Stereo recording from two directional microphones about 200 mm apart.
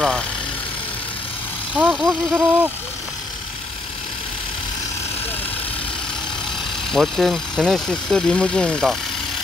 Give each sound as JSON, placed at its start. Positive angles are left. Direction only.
{"t": 1.8, "sound": "speech", "side_deg": -5}
{"t": 6.9, "sound": "speech", "side_deg": 0}